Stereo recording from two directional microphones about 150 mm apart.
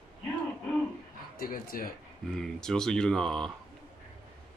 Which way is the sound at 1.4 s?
75° left (ahead or behind).